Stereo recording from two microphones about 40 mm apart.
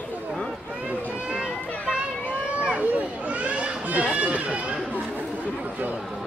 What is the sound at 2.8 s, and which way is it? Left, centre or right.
Children playing, right.